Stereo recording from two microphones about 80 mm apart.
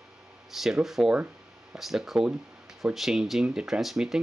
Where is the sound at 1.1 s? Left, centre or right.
Centre.